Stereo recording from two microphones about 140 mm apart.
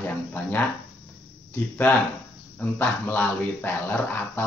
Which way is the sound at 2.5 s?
15° left (ahead or behind).